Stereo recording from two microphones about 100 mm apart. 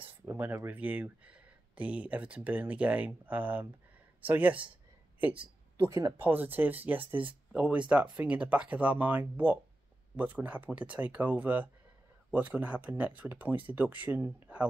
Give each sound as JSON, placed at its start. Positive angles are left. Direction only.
{"t": 0.2, "sound": "speech", "side_deg": -20}
{"t": 5.2, "sound": "a sound", "side_deg": -15}
{"t": 5.9, "sound": "speech", "side_deg": -30}
{"t": 6.2, "sound": "speech", "side_deg": -20}